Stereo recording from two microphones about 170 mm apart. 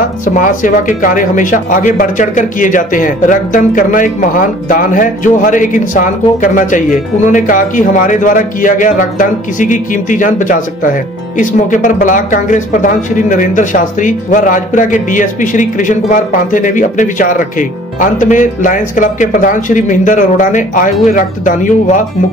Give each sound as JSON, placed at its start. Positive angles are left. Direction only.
{"t": 0.2, "sound": "a man's voice", "side_deg": 50}